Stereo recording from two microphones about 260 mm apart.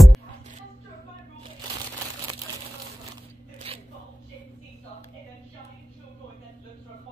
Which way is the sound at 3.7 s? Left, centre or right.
Right.